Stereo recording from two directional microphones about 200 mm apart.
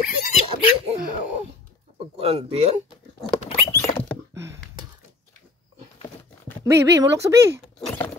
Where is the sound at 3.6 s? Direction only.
10° left (ahead or behind).